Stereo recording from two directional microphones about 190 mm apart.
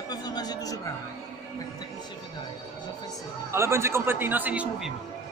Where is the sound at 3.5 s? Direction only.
15° right (ahead or behind).